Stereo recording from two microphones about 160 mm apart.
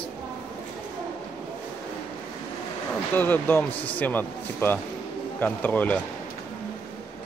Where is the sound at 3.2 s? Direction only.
15° left (ahead or behind).